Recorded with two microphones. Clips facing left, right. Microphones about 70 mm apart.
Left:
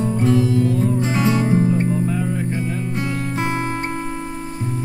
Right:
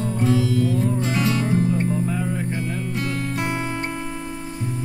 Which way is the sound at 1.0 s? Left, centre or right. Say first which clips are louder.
Left 3 dB; left.